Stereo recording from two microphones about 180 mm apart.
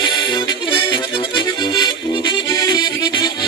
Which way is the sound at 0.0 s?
25° left (ahead or behind).